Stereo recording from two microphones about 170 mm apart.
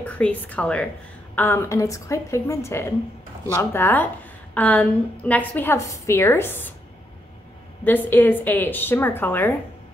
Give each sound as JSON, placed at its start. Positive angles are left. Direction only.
{"t": 0.0, "sound": "a woman's voice", "side_deg": 10}
{"t": 7.8, "sound": "a woman's voice", "side_deg": 10}